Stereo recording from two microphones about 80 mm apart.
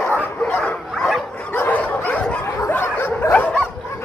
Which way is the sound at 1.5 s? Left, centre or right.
Left.